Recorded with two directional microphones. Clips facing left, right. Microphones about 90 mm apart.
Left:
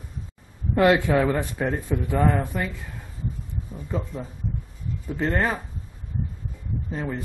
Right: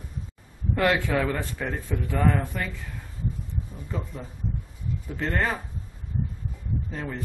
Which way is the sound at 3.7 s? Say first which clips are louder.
Left 7 dB; 15° left (ahead or behind).